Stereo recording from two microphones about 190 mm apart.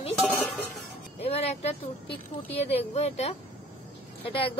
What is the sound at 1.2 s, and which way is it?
Speech, 30° left (ahead or behind).